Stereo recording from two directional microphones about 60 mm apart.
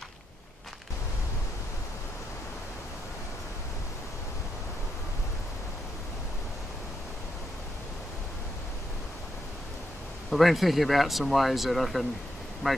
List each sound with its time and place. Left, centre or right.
10.3 s speech: centre